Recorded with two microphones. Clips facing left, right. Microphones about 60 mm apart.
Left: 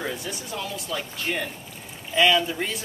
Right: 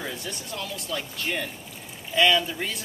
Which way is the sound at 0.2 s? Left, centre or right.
Centre.